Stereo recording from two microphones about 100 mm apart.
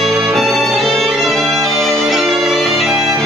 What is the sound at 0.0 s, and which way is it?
Music, centre (ahead or behind).